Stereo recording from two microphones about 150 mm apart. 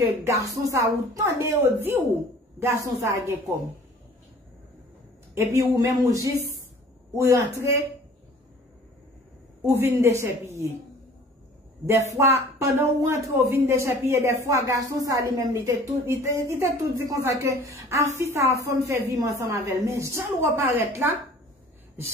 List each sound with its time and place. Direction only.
0.0 s a woman's voice: 20° right (ahead or behind)
5.3 s a woman's voice: 20° right (ahead or behind)
9.6 s a woman's voice: 15° right (ahead or behind)
12.2 s a woman's voice: 20° right (ahead or behind)